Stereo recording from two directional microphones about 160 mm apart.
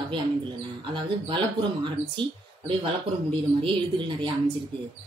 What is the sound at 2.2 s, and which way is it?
Speech, 30° right (ahead or behind).